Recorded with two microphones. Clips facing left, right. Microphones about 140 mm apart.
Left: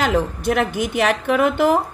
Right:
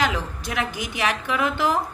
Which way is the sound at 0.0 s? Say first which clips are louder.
Left 6 dB; 55° left (ahead or behind).